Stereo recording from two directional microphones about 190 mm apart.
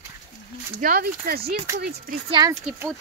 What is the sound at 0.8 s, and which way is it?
Speech, 50° right (ahead or behind).